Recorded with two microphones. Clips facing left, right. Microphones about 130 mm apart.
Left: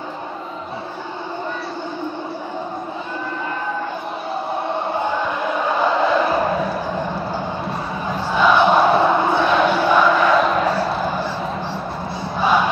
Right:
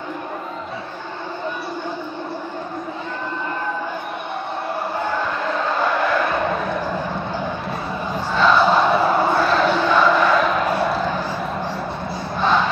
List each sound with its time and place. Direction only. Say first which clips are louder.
5.0 s a sound: left 1 dB; 15° left (ahead or behind)
8.3 s crowd: left 1 dB; 10° left (ahead or behind)
9.0 s crowd: left 1 dB; centre (ahead or behind)
12.4 s crowd: left 1 dB; 10° left (ahead or behind)